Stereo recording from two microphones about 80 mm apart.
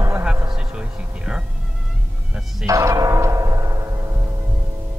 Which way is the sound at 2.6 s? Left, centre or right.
Right.